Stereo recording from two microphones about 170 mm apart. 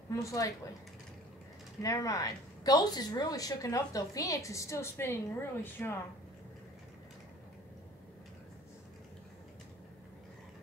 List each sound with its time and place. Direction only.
0.1 s a woman's voice: 20° left (ahead or behind)
1.8 s a woman's voice: 20° left (ahead or behind)